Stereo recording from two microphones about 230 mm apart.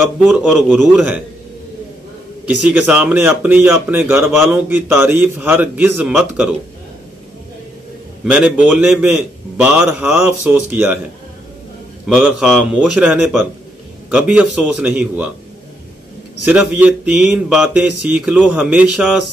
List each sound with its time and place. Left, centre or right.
0.2 s speech: centre
2.4 s speech: centre
8.3 s speech: centre
12.1 s speech: centre
16.4 s speech: centre